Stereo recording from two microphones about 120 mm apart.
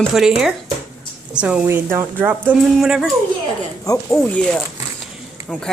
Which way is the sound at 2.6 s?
Centre (ahead or behind).